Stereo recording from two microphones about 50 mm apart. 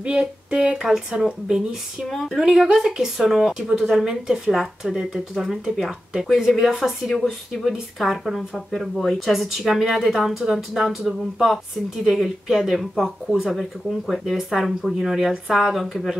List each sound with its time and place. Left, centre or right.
0.0 s speech: right
1.2 s speech: centre